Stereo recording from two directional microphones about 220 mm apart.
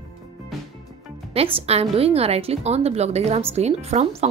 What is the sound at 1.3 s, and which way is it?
A woman's voice, 25° right (ahead or behind).